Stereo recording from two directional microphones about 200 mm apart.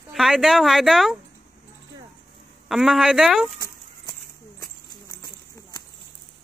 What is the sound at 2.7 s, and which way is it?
Speech, centre (ahead or behind).